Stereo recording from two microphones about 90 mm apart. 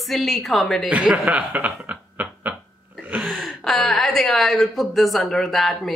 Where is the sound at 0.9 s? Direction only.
15° right (ahead or behind).